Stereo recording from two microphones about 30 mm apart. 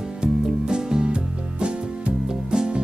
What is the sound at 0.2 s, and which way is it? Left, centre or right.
Music, right.